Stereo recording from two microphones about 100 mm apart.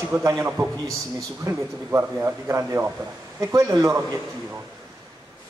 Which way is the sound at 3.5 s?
35° right (ahead or behind).